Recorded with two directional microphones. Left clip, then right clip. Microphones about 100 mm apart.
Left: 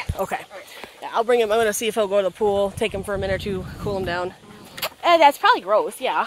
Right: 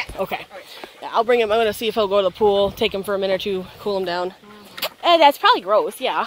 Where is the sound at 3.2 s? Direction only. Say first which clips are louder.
Right 4 dB; 55° right (ahead or behind).